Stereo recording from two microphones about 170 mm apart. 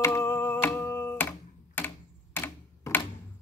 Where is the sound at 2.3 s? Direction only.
10° left (ahead or behind).